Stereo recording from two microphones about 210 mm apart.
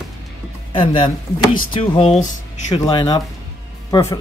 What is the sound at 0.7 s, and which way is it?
Speech, 20° left (ahead or behind).